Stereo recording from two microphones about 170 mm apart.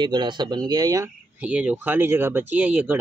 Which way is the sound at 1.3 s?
10° right (ahead or behind).